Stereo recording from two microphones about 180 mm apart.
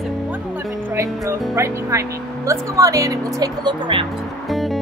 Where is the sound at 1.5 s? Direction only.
15° right (ahead or behind).